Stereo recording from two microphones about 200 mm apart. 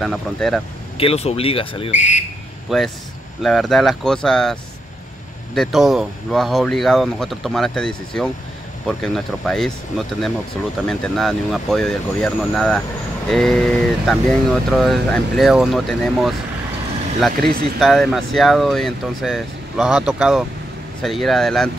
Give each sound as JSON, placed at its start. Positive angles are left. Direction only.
{"t": 0.0, "sound": "speech", "side_deg": 0}
{"t": 0.9, "sound": "speech", "side_deg": 30}
{"t": 2.7, "sound": "speech", "side_deg": 0}